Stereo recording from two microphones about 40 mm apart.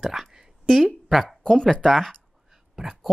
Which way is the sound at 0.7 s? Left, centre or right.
Centre.